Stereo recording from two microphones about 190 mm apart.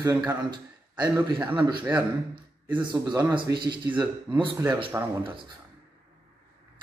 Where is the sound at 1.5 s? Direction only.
25° right (ahead or behind).